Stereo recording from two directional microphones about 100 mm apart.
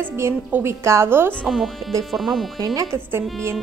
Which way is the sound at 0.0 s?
20° right (ahead or behind).